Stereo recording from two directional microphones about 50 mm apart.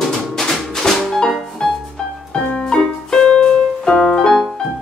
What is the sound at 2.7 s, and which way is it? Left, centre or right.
Music, centre.